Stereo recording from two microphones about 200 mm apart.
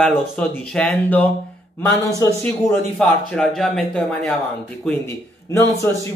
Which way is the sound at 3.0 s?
5° left (ahead or behind).